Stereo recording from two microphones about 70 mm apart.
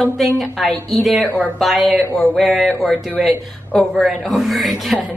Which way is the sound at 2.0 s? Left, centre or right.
Left.